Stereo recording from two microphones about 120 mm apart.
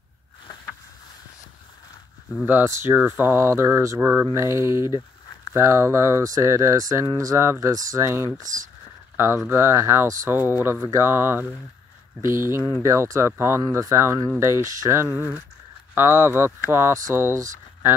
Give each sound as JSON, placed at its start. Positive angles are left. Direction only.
{"t": 2.4, "sound": "speech", "side_deg": -20}
{"t": 4.8, "sound": "a sound", "side_deg": 35}
{"t": 5.5, "sound": "speech", "side_deg": -25}